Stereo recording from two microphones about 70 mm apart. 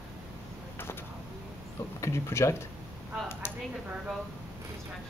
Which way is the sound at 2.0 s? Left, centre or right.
Left.